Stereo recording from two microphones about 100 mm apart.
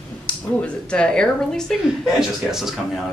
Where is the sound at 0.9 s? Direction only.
10° left (ahead or behind).